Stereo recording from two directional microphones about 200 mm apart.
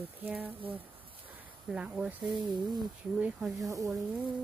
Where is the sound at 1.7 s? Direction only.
5° right (ahead or behind).